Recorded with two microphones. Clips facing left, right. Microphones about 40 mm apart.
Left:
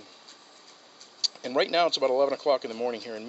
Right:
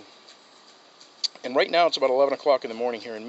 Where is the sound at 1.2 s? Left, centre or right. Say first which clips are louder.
Right 3 dB; centre.